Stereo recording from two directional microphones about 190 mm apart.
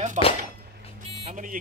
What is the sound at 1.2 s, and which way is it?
Speech, 40° right (ahead or behind).